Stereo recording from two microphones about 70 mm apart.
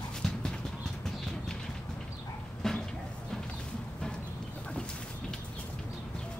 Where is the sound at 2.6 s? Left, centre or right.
Centre.